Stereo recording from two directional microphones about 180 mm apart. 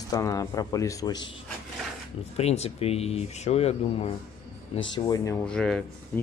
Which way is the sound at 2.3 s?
35° left (ahead or behind).